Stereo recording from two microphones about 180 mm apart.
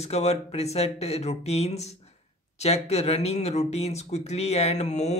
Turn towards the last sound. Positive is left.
turn(degrees=40)  # may be behind; listen again after turning